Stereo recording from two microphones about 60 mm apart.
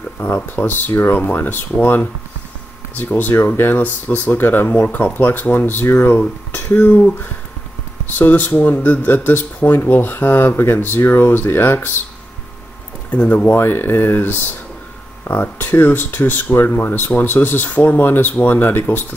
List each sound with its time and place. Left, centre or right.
0.2 s speech: left
13.1 s speech: left
13.6 s speech: left